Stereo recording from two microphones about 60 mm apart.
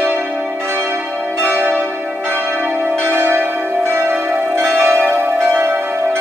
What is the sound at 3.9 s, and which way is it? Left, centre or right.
Change ringing, right.